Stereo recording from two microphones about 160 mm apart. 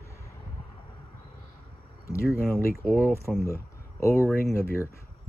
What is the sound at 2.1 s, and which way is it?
Speech, 15° left (ahead or behind).